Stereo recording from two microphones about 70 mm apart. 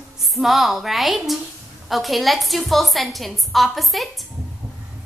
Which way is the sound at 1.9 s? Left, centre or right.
Centre.